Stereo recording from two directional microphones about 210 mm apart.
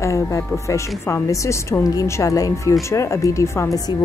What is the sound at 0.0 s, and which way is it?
Speech, 15° left (ahead or behind).